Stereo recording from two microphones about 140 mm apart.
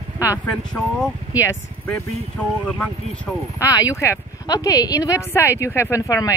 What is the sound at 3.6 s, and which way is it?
A woman's voice, 25° left (ahead or behind).